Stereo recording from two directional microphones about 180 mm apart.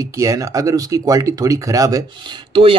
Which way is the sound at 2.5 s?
30° right (ahead or behind).